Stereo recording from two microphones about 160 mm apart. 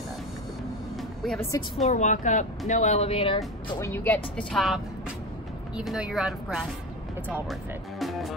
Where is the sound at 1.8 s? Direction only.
45° left (ahead or behind).